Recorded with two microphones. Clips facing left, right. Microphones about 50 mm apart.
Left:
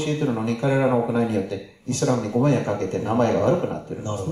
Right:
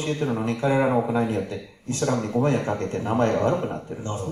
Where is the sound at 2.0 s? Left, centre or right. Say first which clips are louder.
Left 2 dB; centre.